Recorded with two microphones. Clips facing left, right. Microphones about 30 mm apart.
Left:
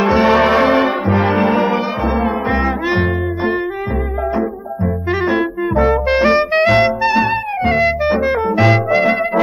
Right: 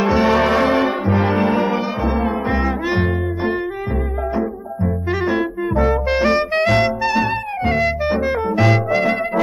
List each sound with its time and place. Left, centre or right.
0.0 s brass instrument: centre
2.2 s music: centre
5.2 s music: centre